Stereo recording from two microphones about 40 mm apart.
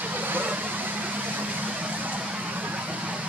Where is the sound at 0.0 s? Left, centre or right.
Right.